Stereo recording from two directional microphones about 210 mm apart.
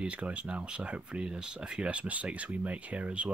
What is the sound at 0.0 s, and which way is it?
Speech, 5° right (ahead or behind).